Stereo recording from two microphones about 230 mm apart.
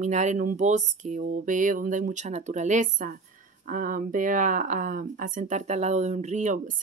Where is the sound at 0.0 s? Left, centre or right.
Right.